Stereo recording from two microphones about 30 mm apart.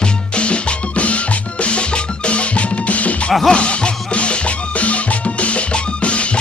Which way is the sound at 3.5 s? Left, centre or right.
Left.